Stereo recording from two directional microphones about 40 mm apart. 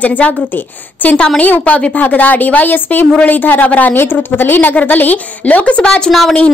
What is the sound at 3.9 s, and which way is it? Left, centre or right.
Speech, left.